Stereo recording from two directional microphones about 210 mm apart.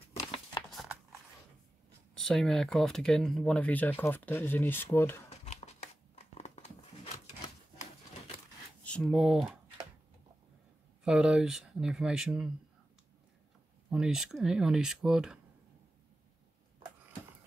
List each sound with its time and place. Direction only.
2.1 s speech: centre (ahead or behind)
5.3 s a sound: 30° left (ahead or behind)
8.8 s speech: 5° left (ahead or behind)
11.1 s speech: 5° right (ahead or behind)
13.8 s speech: 5° right (ahead or behind)